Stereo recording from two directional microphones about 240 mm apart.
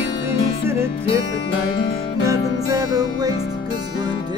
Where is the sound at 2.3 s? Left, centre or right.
Centre.